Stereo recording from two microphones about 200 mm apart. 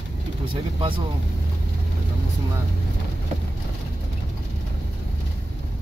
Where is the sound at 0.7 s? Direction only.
25° right (ahead or behind).